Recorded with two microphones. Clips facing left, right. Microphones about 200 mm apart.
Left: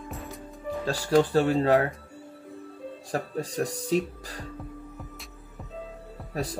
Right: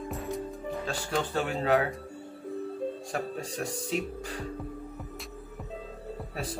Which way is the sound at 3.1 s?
35° left (ahead or behind).